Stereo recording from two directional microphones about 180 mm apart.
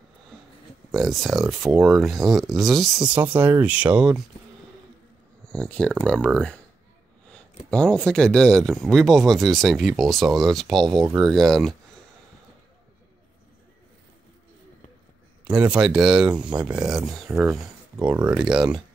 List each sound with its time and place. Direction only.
0.9 s speech: centre (ahead or behind)
5.5 s speech: 5° left (ahead or behind)
7.7 s speech: 5° left (ahead or behind)
15.7 s speech: 5° right (ahead or behind)
17.3 s speech: 15° right (ahead or behind)